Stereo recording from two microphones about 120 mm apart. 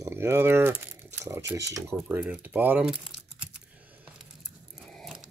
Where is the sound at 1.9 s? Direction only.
10° right (ahead or behind).